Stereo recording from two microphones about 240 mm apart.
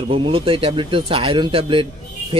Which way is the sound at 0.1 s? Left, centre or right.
Right.